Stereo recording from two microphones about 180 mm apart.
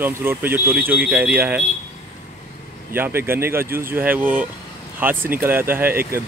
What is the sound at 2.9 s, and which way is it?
Speech, 10° right (ahead or behind).